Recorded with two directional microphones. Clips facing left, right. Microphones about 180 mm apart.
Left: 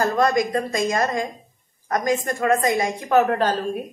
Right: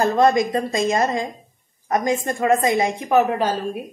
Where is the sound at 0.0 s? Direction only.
25° right (ahead or behind).